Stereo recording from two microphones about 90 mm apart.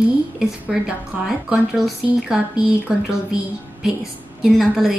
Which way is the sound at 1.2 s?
5° right (ahead or behind).